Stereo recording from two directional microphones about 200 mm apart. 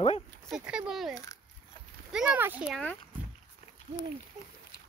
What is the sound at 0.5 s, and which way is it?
Speech, 5° right (ahead or behind).